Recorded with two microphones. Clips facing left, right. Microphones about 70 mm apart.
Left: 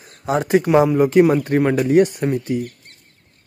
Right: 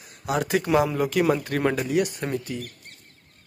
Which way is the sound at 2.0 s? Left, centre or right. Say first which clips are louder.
Left 10 dB; left.